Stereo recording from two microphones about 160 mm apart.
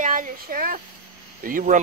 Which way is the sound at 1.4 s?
55° right (ahead or behind).